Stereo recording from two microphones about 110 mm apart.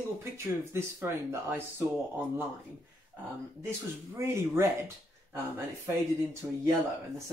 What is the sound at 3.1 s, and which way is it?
Speech, 15° right (ahead or behind).